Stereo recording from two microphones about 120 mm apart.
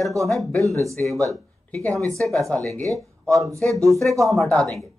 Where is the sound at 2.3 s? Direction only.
5° left (ahead or behind).